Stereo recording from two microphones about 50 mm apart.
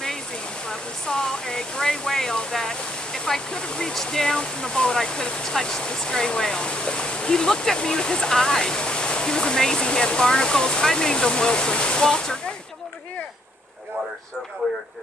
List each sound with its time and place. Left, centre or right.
0.7 s speech: centre